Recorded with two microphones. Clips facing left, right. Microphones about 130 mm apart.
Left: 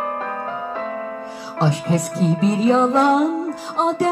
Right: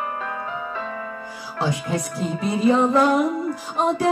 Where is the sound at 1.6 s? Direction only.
30° left (ahead or behind).